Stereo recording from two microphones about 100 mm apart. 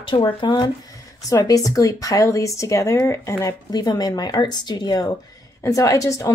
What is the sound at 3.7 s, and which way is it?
Speech, 40° left (ahead or behind).